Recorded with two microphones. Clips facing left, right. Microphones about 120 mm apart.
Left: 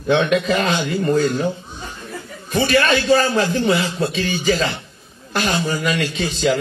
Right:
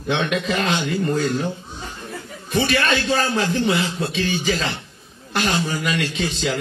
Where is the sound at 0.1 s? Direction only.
45° left (ahead or behind).